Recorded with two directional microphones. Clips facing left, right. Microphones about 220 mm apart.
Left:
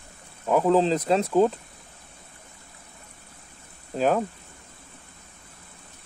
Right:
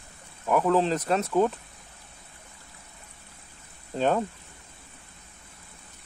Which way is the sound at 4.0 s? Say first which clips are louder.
Left 2 dB; 5° left (ahead or behind).